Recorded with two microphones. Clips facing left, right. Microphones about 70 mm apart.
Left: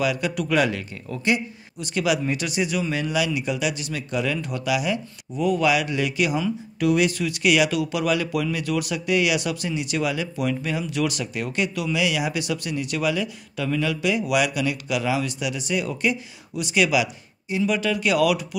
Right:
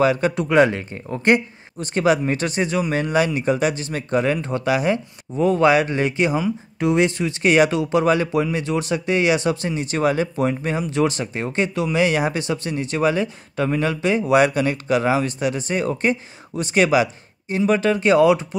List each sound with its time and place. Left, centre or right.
0.0 s speech: right